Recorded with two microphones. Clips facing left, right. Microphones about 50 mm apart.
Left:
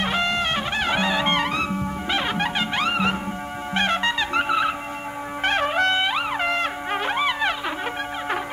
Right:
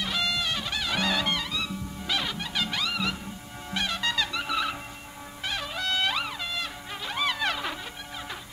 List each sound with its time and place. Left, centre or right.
0.0 s music: left
1.0 s music: left
1.3 s music: left
7.2 s music: left